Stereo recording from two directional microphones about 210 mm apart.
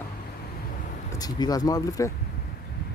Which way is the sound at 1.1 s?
20° left (ahead or behind).